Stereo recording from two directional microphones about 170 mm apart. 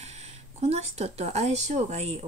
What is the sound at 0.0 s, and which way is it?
Speech, 40° right (ahead or behind).